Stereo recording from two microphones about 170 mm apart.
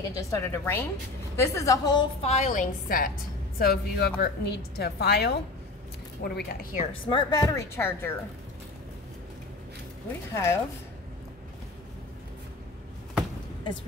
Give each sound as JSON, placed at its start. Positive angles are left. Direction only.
{"t": 0.1, "sound": "a woman's voice", "side_deg": 15}
{"t": 2.2, "sound": "a woman's voice", "side_deg": 45}
{"t": 3.5, "sound": "a woman's voice", "side_deg": 65}
{"t": 7.1, "sound": "speech", "side_deg": 25}
{"t": 10.3, "sound": "a woman's voice", "side_deg": 15}